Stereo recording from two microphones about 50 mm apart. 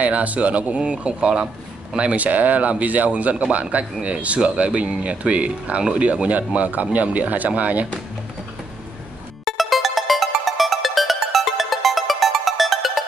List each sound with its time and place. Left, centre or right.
0.0 s speech: right
9.4 s music: centre